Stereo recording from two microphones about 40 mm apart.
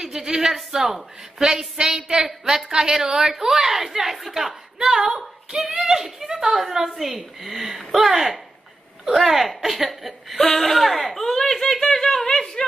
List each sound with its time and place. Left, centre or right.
0.0 s a woman's voice: centre
5.5 s speech: right
5.9 s a woman's voice: centre
9.6 s a sound: centre
11.4 s speech: centre
12.3 s a sound: centre